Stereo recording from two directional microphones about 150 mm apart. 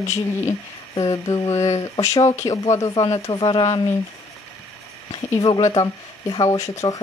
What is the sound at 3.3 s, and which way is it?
Speech, 35° left (ahead or behind).